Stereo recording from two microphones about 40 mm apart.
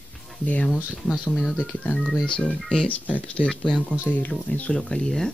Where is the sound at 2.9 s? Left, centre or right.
Left.